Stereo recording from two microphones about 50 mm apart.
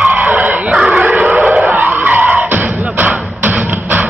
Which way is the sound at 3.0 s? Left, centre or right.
Right.